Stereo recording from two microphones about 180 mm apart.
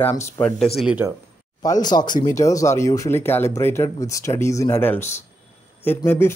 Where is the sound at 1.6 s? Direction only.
20° left (ahead or behind).